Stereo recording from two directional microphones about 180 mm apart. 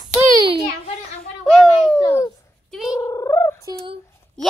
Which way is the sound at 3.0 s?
20° left (ahead or behind).